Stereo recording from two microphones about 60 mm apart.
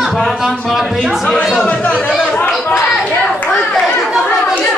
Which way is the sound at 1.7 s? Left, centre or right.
Left.